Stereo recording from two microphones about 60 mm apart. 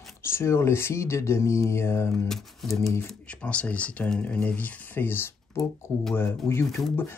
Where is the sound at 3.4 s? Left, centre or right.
Left.